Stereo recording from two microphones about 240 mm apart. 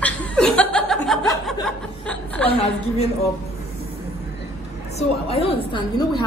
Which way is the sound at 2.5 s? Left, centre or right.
Left.